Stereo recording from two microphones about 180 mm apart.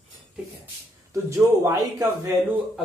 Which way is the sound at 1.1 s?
15° right (ahead or behind).